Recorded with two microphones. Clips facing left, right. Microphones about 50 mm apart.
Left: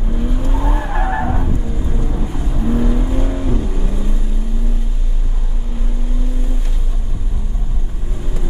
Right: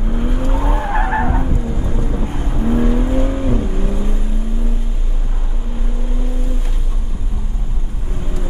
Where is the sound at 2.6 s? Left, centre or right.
Right.